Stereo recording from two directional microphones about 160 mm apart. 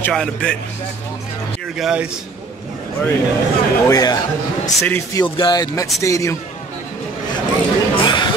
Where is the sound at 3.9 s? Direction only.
25° left (ahead or behind).